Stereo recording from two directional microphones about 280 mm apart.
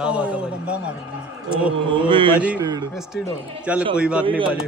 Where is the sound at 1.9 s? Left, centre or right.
Centre.